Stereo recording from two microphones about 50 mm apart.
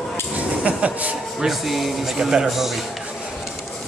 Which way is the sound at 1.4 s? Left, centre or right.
Centre.